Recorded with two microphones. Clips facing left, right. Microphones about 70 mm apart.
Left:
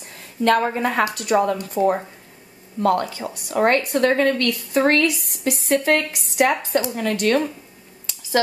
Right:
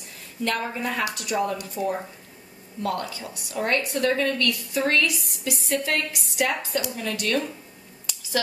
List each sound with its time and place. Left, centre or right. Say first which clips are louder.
0.4 s speech: left 9 dB; left
3.5 s speech: left 7 dB; left